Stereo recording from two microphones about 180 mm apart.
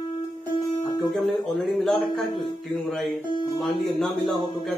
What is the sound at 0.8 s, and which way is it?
Music, 25° left (ahead or behind).